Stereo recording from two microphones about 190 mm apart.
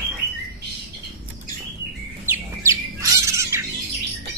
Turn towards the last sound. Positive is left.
turn(degrees=-15)  # may be behind; listen again after turning